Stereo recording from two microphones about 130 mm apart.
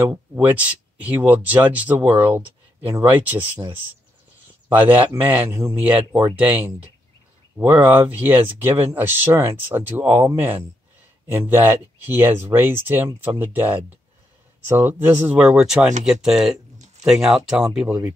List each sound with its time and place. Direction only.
0.5 s speech: 10° right (ahead or behind)
5.0 s a man's voice: 15° right (ahead or behind)